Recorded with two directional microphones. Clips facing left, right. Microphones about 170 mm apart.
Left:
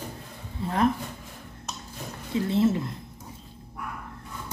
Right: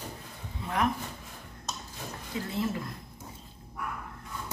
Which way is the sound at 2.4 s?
25° left (ahead or behind).